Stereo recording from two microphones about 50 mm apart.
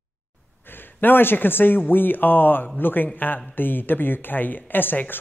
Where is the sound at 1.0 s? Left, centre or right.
Left.